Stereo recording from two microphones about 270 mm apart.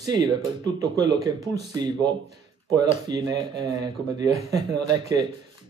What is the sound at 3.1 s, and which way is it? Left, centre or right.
Speech, centre.